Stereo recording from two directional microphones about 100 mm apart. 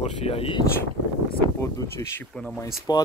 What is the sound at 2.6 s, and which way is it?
Speech, 40° left (ahead or behind).